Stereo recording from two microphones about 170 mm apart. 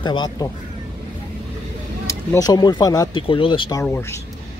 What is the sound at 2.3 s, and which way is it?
Speech, 25° left (ahead or behind).